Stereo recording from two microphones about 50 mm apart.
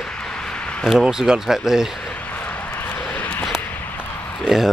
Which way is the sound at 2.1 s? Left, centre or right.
Left.